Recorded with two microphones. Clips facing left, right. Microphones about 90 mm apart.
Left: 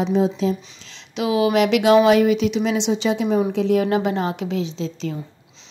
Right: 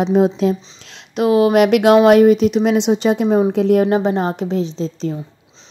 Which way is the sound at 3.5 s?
50° right (ahead or behind).